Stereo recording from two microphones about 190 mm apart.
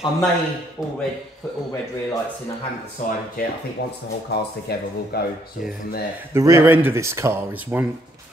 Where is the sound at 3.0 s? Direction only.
35° left (ahead or behind).